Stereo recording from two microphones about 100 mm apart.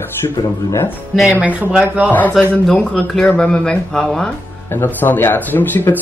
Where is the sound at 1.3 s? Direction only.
15° right (ahead or behind).